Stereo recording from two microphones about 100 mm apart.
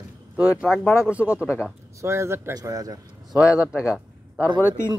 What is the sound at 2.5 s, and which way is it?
Speech, 35° right (ahead or behind).